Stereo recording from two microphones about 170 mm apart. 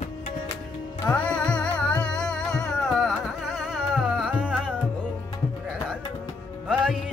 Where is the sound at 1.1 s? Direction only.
5° left (ahead or behind).